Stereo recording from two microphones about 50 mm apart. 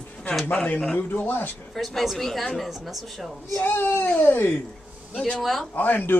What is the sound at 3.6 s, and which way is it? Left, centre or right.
Speech, left.